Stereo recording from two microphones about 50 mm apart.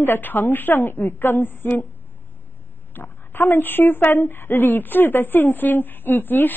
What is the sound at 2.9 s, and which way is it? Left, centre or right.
A woman's voice, left.